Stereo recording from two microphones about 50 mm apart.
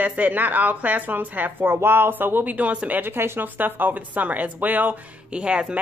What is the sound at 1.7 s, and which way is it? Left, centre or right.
Speech, right.